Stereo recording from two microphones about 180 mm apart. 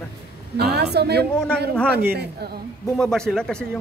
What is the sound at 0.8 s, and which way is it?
Speech, 65° right (ahead or behind).